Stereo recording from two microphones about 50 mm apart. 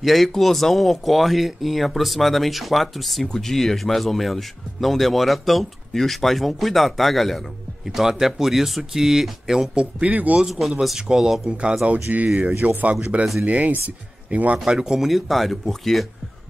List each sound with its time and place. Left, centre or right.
0.0 s speech: centre
9.9 s speech: right
10.4 s speech: centre
11.9 s speech: right
14.7 s speech: centre
15.0 s speech: centre